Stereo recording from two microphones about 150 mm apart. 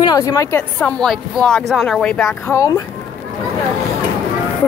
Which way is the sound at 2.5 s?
25° left (ahead or behind).